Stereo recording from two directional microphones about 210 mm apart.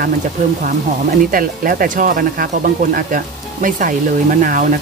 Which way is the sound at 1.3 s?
40° right (ahead or behind).